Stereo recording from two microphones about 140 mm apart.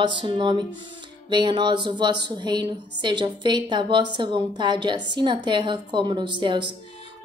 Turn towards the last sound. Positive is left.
turn(degrees=-35)  # may be behind; listen again after turning